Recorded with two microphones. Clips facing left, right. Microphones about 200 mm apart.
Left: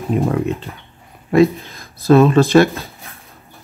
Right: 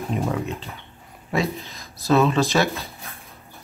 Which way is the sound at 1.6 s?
50° left (ahead or behind).